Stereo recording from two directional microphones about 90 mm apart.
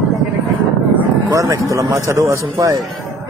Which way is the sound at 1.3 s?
40° right (ahead or behind).